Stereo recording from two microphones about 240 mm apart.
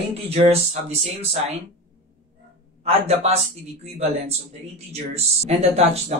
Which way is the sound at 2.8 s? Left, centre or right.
Right.